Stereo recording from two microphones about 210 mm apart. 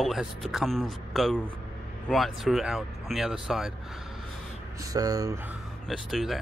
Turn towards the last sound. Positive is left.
turn(degrees=0)  # may be behind; listen again after turning